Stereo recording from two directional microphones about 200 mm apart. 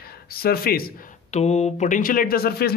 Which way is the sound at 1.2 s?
35° left (ahead or behind).